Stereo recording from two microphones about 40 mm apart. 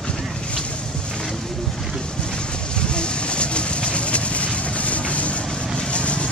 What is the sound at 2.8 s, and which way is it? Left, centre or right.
Vehicle, left.